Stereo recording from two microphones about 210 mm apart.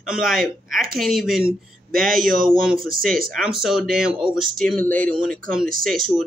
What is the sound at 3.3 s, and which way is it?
Speech, centre (ahead or behind).